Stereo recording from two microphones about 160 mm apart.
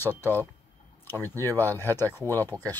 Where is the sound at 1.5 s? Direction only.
15° left (ahead or behind).